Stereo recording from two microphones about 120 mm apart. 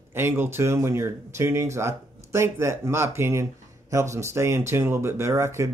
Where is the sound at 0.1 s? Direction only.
20° right (ahead or behind).